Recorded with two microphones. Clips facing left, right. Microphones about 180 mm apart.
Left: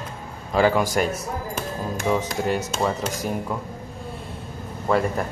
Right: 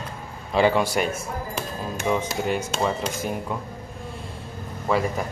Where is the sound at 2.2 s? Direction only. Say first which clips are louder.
Left 1 dB; centre (ahead or behind).